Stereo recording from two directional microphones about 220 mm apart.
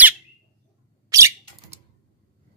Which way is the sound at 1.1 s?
15° right (ahead or behind).